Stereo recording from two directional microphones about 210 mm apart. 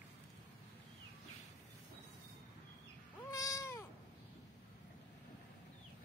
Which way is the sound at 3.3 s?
15° left (ahead or behind).